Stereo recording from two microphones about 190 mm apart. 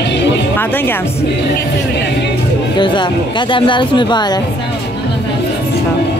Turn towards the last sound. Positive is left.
turn(degrees=25)  # may be behind; listen again after turning